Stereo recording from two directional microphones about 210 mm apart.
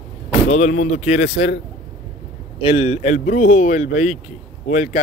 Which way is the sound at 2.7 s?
30° left (ahead or behind).